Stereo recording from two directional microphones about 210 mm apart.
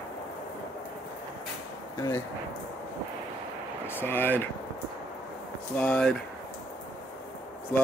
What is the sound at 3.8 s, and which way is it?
Speech, 10° left (ahead or behind).